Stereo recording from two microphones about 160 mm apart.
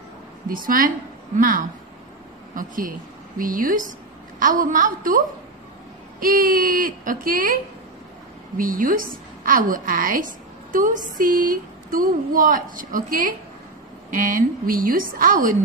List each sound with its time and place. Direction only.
0.5 s speech: 60° right (ahead or behind)
8.5 s speech: 60° right (ahead or behind)